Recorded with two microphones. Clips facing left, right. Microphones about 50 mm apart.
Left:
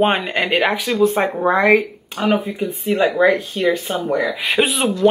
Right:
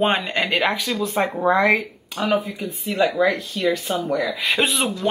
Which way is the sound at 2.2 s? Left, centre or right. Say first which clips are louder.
Left 3 dB; left.